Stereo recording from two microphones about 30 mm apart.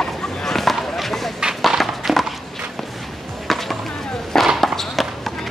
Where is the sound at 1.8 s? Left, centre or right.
Centre.